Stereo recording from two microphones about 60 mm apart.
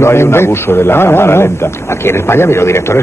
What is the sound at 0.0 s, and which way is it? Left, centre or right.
A man's voice, left.